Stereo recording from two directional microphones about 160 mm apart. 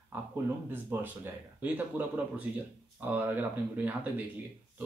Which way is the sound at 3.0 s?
10° right (ahead or behind).